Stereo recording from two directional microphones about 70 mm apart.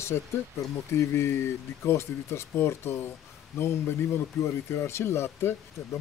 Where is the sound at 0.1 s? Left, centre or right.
Left.